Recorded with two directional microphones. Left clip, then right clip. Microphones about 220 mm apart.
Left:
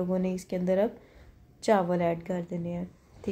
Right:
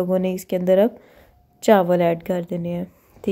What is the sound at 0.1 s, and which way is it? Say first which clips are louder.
A woman's voice: right 9 dB; 40° right (ahead or behind).